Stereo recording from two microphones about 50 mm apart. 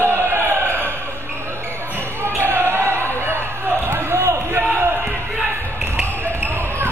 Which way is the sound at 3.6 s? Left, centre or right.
Right.